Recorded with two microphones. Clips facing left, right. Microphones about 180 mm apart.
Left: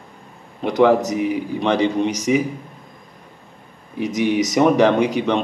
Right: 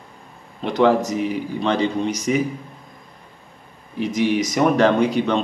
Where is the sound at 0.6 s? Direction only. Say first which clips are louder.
Left 2 dB; 15° left (ahead or behind).